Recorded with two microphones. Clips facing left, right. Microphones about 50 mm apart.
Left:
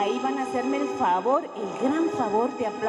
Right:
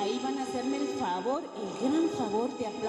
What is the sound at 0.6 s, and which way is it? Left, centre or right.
Speech, left.